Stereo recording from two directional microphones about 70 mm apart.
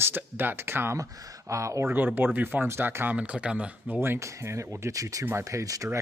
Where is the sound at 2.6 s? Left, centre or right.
Right.